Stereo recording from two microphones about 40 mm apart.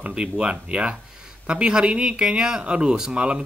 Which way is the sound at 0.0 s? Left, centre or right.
Right.